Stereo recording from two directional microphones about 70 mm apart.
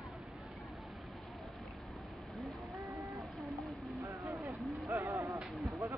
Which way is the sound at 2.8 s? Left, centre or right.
Right.